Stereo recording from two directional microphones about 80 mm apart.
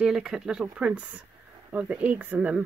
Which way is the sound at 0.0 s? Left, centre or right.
Centre.